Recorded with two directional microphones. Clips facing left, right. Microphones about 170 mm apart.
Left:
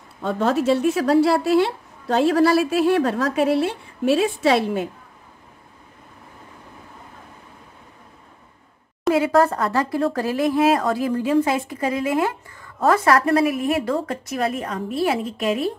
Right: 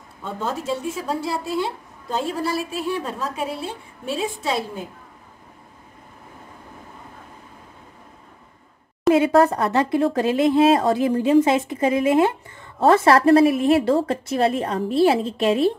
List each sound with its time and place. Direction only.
0.2 s a woman's voice: 80° left
9.1 s speech: 20° right (ahead or behind)